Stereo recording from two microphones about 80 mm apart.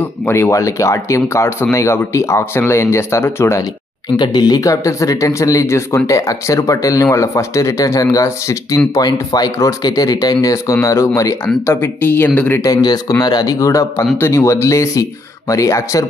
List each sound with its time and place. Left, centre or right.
0.3 s speech: left
4.2 s speech: left
12.6 s speech: left